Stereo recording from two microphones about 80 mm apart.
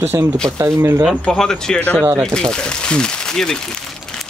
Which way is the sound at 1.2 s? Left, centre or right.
Centre.